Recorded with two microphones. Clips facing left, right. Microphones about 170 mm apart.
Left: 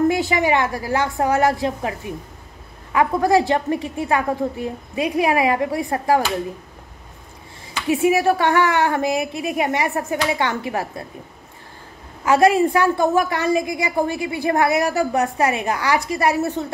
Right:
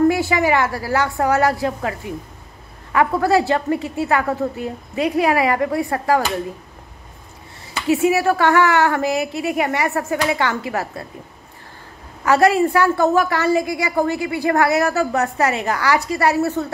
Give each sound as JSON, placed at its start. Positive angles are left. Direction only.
{"t": 0.1, "sound": "a woman's voice", "side_deg": 20}
{"t": 7.9, "sound": "a woman's voice", "side_deg": 15}
{"t": 12.3, "sound": "a woman's voice", "side_deg": 15}